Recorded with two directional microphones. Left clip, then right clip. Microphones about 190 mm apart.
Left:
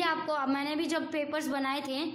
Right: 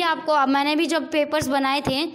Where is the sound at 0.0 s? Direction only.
35° right (ahead or behind).